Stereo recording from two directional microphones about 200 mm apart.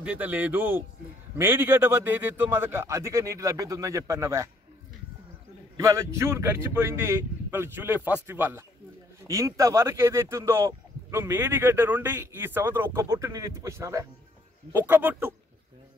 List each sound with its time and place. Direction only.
0.0 s speech: 5° right (ahead or behind)
5.8 s speech: 15° right (ahead or behind)